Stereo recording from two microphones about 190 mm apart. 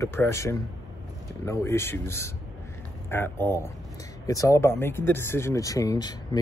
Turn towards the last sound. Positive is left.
turn(degrees=20)  # may be behind; listen again after turning